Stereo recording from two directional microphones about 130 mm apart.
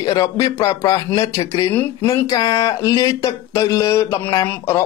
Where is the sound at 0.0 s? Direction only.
30° left (ahead or behind).